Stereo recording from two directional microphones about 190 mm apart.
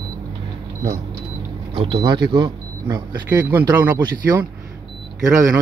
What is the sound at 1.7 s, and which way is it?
Speech, 25° right (ahead or behind).